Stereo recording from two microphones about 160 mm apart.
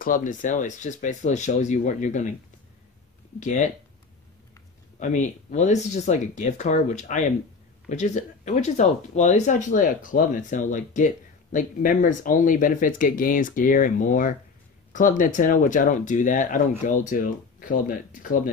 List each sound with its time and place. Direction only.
0.0 s speech: 55° left (ahead or behind)
3.3 s speech: 50° left (ahead or behind)
4.9 s speech: 50° left (ahead or behind)